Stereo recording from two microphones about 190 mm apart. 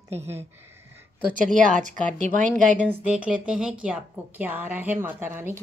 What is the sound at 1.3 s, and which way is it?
A woman's voice, 40° right (ahead or behind).